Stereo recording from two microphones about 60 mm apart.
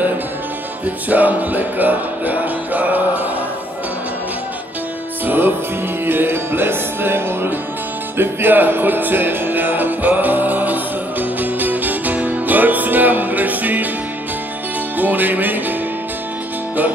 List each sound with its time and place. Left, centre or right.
0.8 s music: right
5.2 s music: right
15.0 s music: right